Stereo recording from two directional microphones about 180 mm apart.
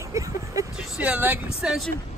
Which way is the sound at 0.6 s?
20° right (ahead or behind).